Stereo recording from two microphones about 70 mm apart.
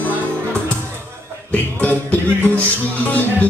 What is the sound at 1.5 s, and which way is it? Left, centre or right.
Music, left.